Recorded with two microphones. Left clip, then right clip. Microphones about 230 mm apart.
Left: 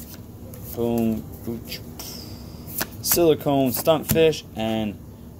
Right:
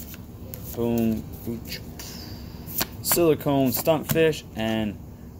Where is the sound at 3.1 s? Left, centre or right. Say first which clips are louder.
Left 2 dB; centre.